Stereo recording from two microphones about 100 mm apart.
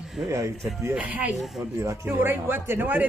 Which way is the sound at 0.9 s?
15° right (ahead or behind).